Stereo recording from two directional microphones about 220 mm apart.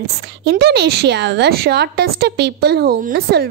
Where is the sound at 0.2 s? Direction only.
50° right (ahead or behind).